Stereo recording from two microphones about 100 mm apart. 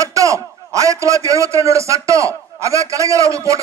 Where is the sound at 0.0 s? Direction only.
35° right (ahead or behind).